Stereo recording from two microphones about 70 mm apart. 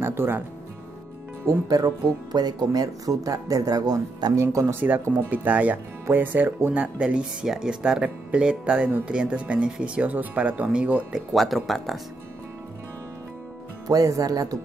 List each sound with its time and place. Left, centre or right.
0.0 s speech: right
1.4 s speech: right
4.4 s speech: right
4.7 s speech: right
11.1 s speech: centre
13.8 s speech: right